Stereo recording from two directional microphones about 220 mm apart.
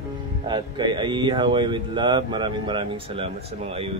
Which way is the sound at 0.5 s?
20° right (ahead or behind).